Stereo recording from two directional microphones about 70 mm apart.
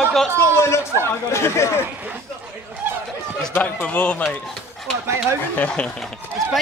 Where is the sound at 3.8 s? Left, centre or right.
Centre.